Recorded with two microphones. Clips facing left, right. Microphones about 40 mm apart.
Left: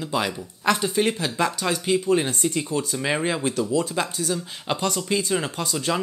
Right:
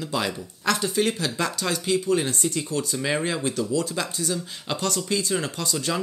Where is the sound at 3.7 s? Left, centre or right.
Left.